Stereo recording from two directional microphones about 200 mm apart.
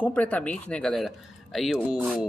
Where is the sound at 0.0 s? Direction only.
5° left (ahead or behind).